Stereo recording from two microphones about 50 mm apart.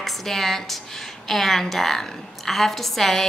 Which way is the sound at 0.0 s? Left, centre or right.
Centre.